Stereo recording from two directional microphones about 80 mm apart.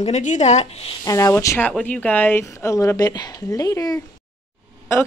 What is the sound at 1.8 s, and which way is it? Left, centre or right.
A woman's voice, left.